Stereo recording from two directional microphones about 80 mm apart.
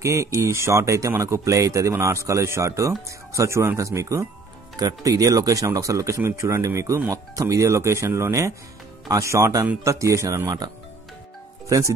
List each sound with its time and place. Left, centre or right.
0.0 s speech: right